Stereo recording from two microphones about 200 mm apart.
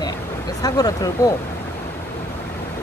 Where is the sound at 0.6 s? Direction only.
20° left (ahead or behind).